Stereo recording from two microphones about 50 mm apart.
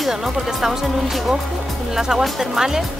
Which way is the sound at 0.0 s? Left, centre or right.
Centre.